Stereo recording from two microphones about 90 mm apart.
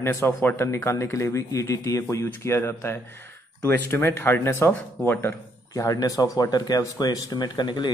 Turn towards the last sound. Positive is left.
turn(degrees=55)  # may be behind; listen again after turning